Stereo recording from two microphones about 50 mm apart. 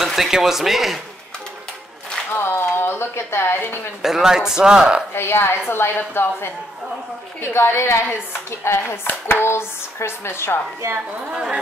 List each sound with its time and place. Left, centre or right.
0.0 s speech: centre
2.3 s speech: left
4.0 s speech: centre
5.1 s a woman's voice: left